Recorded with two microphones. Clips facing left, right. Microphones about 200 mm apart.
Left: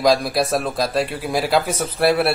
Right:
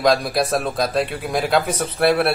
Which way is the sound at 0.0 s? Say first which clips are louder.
Left 1 dB; centre (ahead or behind).